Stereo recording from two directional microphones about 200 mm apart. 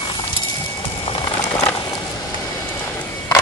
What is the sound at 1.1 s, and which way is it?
Music, 20° left (ahead or behind).